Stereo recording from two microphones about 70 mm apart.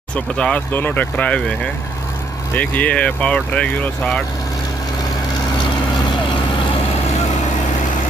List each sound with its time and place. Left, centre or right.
0.1 s speech: centre
0.7 s speech: left
1.1 s speech: centre
2.5 s speech: left